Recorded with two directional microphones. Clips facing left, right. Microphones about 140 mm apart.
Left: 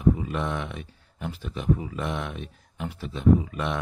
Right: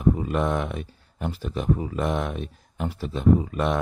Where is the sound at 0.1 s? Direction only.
45° right (ahead or behind).